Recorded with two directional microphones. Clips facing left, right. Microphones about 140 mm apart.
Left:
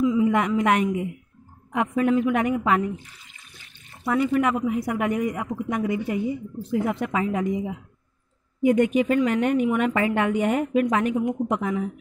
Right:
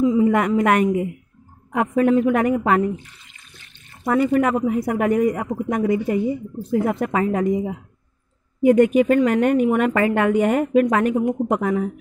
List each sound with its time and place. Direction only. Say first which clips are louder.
0.0 s a sound: right 4 dB; 35° right (ahead or behind)
0.3 s a woman's voice: right 3 dB; 50° right (ahead or behind)
4.0 s a woman's voice: right 4 dB; 45° right (ahead or behind)